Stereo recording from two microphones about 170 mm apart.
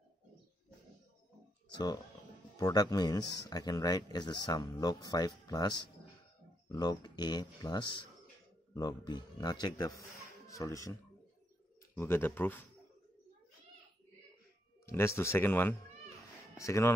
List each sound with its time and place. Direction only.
2.5 s a man's voice: 20° left (ahead or behind)
14.9 s speech: 15° left (ahead or behind)